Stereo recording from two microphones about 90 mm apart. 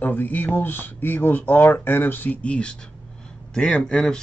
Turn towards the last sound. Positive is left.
turn(degrees=5)  # may be behind; listen again after turning